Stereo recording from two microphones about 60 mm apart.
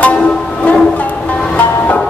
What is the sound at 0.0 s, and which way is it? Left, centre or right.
Music, left.